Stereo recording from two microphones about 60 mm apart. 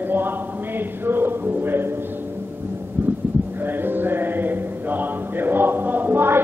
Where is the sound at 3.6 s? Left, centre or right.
Right.